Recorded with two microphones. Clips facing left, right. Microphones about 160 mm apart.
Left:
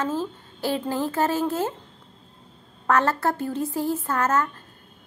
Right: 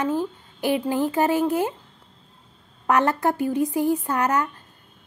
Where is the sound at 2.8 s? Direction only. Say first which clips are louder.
Right 1 dB; 15° right (ahead or behind).